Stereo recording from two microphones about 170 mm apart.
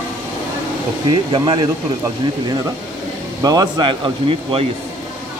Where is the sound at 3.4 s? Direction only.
25° right (ahead or behind).